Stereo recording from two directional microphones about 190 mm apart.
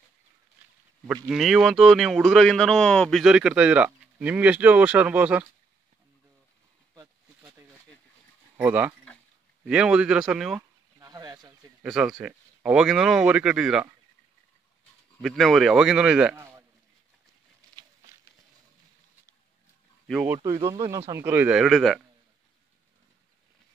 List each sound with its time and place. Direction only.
1.3 s speech: centre (ahead or behind)
7.0 s a sound: 20° right (ahead or behind)
8.5 s speech: 10° right (ahead or behind)
11.0 s a sound: 20° right (ahead or behind)
11.8 s speech: 5° right (ahead or behind)
15.2 s speech: centre (ahead or behind)
20.1 s speech: 5° right (ahead or behind)
20.3 s speech: 25° right (ahead or behind); by 22.0 s centre (ahead or behind)